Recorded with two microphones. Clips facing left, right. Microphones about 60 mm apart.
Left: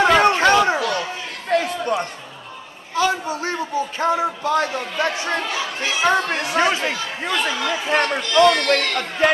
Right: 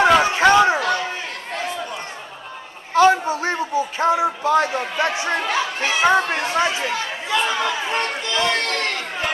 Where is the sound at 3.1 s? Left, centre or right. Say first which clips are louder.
Right 3 dB; right.